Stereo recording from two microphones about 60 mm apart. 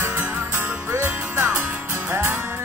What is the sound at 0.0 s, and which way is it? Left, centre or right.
Music, right.